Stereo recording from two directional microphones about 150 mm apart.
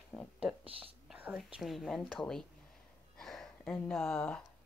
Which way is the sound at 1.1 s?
5° right (ahead or behind).